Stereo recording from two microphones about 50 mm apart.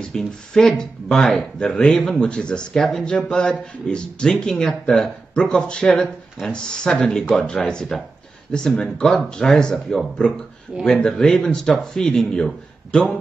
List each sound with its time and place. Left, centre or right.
0.0 s speech: centre
2.1 s a man's voice: centre
2.8 s speech: centre
12.4 s a man's voice: centre